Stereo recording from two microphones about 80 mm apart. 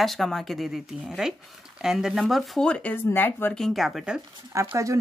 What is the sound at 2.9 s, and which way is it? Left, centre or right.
Speech, left.